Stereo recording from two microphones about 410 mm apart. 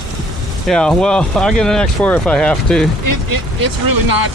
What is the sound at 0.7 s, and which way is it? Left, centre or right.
Speech, centre.